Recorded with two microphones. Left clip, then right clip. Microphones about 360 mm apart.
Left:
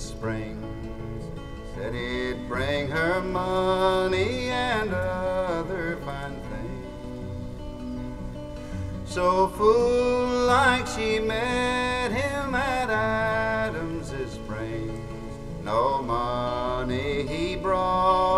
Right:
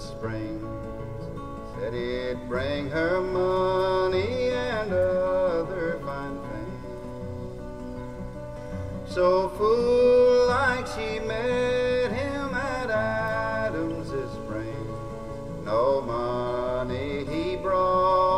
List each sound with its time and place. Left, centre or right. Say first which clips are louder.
1.9 s music: even; centre
9.1 s music: even; centre
15.6 s mantra: right 1 dB; centre